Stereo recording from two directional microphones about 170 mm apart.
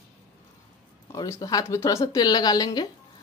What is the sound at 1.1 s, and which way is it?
Speech, 20° left (ahead or behind).